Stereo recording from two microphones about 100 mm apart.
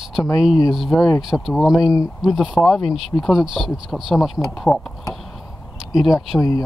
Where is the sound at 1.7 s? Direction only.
35° left (ahead or behind).